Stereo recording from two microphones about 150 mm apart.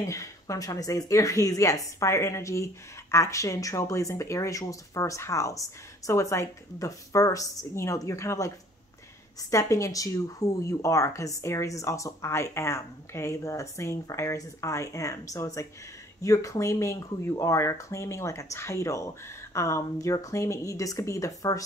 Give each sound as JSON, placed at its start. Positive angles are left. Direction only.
{"t": 0.0, "sound": "speech", "side_deg": 20}